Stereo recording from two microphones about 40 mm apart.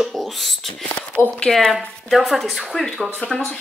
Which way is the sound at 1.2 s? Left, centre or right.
Left.